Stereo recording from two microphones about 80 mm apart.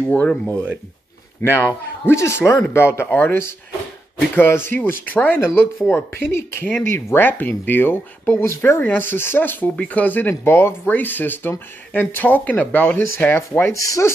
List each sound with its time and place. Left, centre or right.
0.0 s speech: centre
1.4 s speech: left
13.8 s rub: left